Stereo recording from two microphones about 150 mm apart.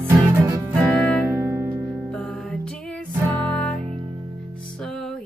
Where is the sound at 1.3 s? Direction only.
15° right (ahead or behind).